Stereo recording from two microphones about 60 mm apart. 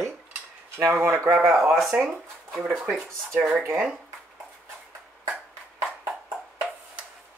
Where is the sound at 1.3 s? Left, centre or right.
Centre.